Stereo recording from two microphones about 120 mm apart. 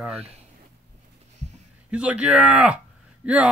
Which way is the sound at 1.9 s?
10° right (ahead or behind).